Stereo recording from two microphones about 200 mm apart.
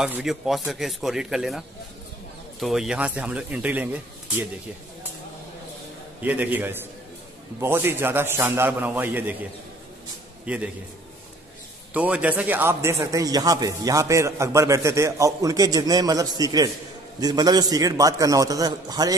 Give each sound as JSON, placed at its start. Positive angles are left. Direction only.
{"t": 0.0, "sound": "a man's voice", "side_deg": 0}
{"t": 2.6, "sound": "a man's voice", "side_deg": 0}
{"t": 6.2, "sound": "a man's voice", "side_deg": -10}
{"t": 10.4, "sound": "a man's voice", "side_deg": -5}
{"t": 11.9, "sound": "a man's voice", "side_deg": -5}